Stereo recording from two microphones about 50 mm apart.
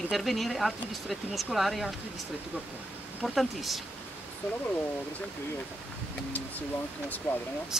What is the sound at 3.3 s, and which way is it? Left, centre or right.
Speech, centre.